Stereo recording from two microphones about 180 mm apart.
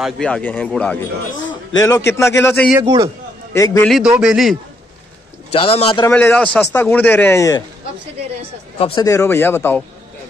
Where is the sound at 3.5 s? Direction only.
15° left (ahead or behind).